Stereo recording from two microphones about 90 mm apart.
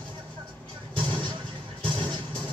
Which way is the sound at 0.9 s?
65° right (ahead or behind).